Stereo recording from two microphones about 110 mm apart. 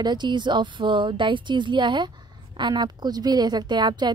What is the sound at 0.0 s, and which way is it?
Speech, 40° right (ahead or behind).